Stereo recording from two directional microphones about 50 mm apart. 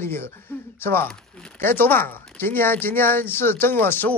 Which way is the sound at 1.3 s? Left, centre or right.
Centre.